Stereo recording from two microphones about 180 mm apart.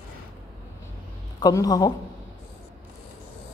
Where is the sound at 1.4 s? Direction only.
20° left (ahead or behind).